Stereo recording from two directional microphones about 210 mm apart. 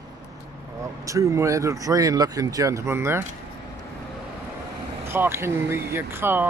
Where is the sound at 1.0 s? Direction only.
15° right (ahead or behind).